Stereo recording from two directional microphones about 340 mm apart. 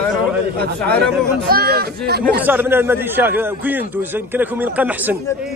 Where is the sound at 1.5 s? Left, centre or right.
Right.